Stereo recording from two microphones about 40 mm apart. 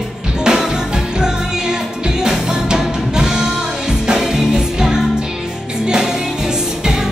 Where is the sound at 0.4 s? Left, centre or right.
Centre.